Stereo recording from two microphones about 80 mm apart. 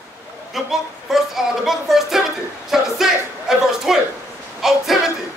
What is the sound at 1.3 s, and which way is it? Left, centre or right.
Speech, centre.